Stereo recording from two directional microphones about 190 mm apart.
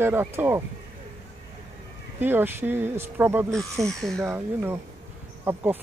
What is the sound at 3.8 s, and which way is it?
Speech, centre (ahead or behind).